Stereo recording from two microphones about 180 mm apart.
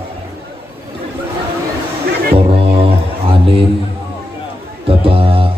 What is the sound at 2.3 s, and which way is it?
Music, 30° right (ahead or behind).